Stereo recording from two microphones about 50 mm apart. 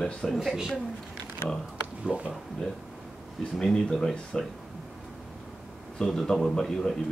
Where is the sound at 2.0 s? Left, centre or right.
Right.